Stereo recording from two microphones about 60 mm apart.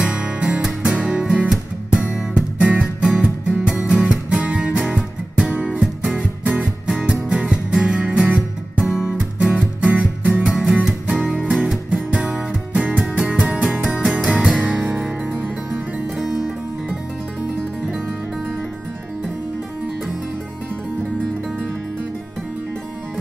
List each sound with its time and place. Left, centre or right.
0.0 s music: centre
11.5 s music: centre
16.3 s music: centre